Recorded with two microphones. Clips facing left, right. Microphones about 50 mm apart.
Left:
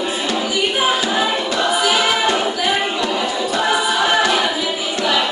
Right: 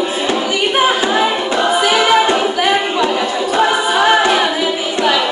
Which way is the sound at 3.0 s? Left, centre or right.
Right.